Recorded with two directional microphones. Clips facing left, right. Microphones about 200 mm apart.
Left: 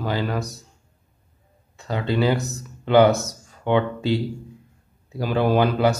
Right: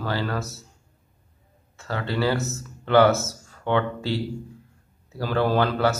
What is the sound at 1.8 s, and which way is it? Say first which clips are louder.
Speech: left 3 dB; 15° left (ahead or behind).